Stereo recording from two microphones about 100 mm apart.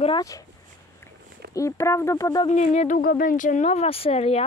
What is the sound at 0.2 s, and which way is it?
Speech, 35° left (ahead or behind).